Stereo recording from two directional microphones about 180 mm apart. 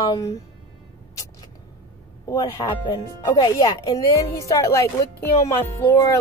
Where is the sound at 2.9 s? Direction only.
20° left (ahead or behind).